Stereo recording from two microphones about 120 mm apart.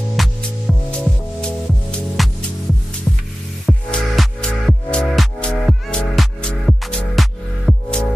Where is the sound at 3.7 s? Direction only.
Centre (ahead or behind).